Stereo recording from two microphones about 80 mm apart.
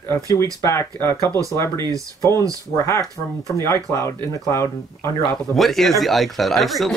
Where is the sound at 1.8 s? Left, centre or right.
Right.